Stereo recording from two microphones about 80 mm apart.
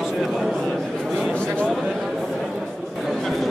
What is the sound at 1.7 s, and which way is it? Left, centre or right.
Chatter, centre.